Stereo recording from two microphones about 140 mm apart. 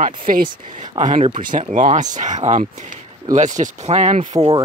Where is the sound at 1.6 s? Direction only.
55° right (ahead or behind).